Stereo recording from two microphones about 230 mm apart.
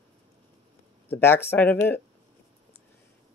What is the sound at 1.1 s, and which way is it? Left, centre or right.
Speech, centre.